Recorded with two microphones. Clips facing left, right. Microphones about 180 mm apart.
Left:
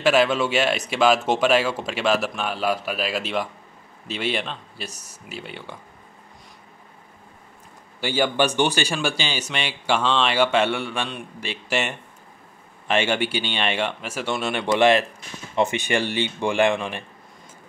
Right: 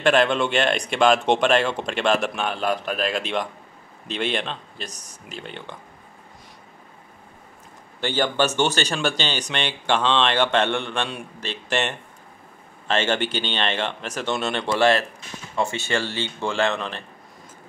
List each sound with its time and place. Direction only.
0.0 s speech: 5° left (ahead or behind)
8.0 s speech: 10° left (ahead or behind)